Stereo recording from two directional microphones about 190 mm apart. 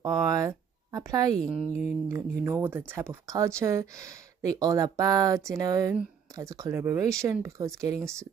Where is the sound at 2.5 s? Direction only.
10° right (ahead or behind).